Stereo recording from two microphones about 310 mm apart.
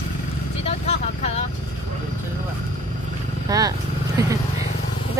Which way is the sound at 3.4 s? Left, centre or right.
Centre.